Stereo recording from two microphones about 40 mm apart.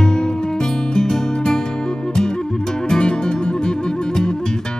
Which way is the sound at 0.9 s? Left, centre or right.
Centre.